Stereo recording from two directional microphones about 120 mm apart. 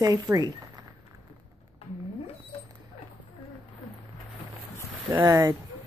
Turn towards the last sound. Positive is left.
turn(degrees=-30)  # may be behind; listen again after turning